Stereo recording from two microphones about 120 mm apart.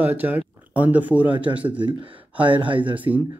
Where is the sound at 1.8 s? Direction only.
45° right (ahead or behind).